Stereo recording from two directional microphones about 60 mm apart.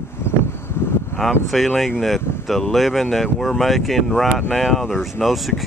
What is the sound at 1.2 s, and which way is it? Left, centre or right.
Speech, centre.